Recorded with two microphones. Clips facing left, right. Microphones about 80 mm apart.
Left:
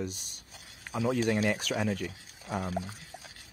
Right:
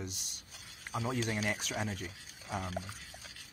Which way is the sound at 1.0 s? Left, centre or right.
Left.